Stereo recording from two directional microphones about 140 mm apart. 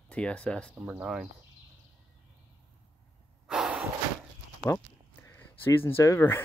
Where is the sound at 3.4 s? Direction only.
5° right (ahead or behind).